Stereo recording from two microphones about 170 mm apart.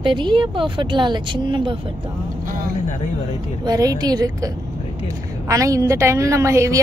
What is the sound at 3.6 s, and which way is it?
A woman's voice, 20° right (ahead or behind).